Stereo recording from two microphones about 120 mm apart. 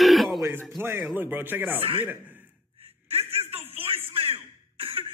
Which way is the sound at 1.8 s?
50° right (ahead or behind).